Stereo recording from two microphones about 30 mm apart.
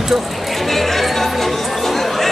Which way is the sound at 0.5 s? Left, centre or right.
Centre.